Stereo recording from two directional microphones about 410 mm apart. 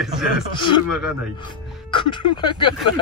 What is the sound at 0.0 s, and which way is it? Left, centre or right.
Speech, centre.